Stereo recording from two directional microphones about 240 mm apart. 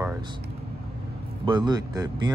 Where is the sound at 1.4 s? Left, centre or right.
Centre.